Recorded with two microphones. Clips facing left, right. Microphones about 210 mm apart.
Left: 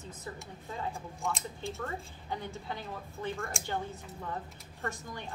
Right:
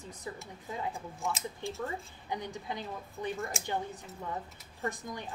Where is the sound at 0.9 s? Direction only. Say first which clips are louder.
Even; centre (ahead or behind).